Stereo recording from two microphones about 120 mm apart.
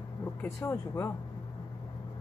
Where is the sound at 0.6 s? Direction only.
25° left (ahead or behind).